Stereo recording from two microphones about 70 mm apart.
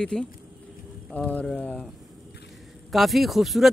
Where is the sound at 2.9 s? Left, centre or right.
Centre.